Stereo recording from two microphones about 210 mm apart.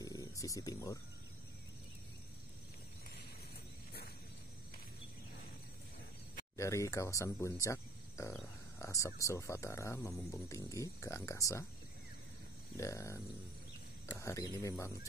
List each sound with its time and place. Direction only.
0.0 s a sound: 15° left (ahead or behind)
6.5 s speech: 15° left (ahead or behind)
12.7 s speech: 15° left (ahead or behind)